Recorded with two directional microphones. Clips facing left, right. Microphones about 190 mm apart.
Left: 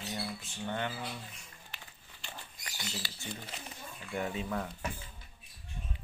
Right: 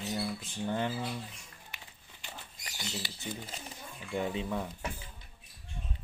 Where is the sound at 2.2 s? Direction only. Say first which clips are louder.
Even; 20° right (ahead or behind).